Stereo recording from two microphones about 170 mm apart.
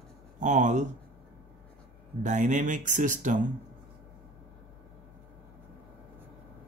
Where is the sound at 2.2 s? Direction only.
45° right (ahead or behind).